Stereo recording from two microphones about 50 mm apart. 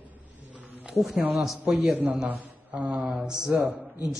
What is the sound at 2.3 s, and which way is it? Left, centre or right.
A man's voice, right.